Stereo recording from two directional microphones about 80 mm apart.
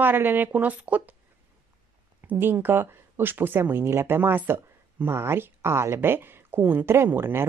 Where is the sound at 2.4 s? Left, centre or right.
Right.